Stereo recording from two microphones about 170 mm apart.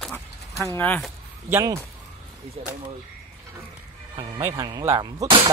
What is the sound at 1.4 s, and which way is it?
Speech, 15° right (ahead or behind).